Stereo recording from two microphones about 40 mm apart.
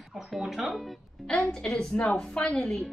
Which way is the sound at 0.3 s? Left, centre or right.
Centre.